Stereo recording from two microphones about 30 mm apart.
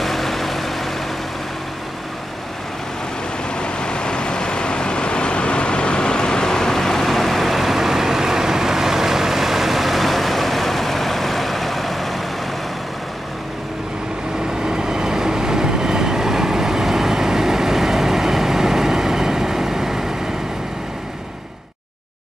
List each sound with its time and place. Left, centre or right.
0.0 s vehicle: centre
3.5 s vehicle: left; by 12.2 s centre
14.6 s vehicle: right